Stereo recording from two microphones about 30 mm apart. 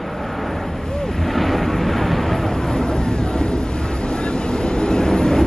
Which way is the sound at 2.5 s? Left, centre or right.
Left.